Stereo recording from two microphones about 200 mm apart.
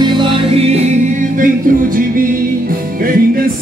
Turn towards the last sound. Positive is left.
turn(degrees=-45)  # may be behind; listen again after turning